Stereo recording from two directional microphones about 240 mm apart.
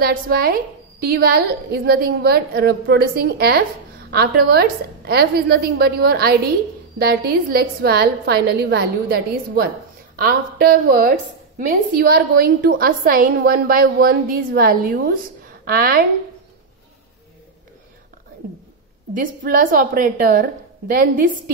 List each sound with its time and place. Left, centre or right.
0.0 s a woman's voice: right
19.1 s a woman's voice: right